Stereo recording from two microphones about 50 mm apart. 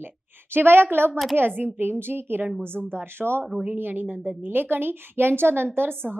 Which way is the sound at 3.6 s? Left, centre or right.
Right.